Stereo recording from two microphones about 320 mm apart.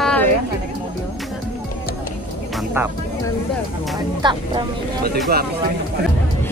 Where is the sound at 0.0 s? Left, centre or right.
Centre.